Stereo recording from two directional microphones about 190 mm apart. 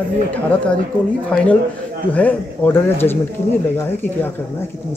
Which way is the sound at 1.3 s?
5° left (ahead or behind).